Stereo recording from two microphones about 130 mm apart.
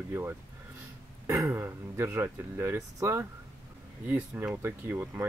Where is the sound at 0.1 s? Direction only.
20° right (ahead or behind).